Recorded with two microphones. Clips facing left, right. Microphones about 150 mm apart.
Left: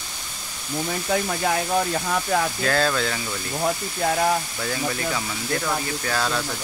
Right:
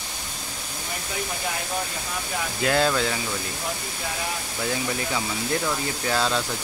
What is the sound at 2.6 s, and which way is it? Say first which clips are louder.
Speech: even; 15° right (ahead or behind).